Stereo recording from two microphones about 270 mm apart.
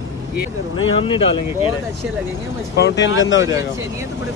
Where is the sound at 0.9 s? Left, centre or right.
Centre.